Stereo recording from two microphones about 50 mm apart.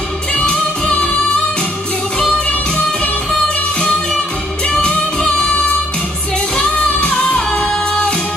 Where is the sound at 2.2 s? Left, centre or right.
Centre.